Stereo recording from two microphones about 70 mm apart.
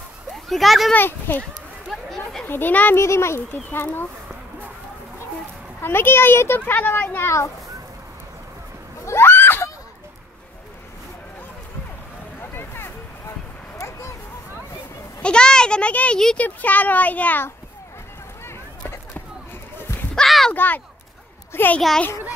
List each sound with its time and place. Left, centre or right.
0.5 s a child's voice: centre
0.9 s speech: left
1.9 s chatter: centre
2.4 s a child's voice: left
3.0 s speech: left
5.8 s a child's voice: left
7.2 s a child's voice: left
9.0 s screaming: left
12.4 s a sound: left
13.7 s a sound: left
15.2 s a child's voice: centre
20.2 s a sound: centre
20.5 s speech: left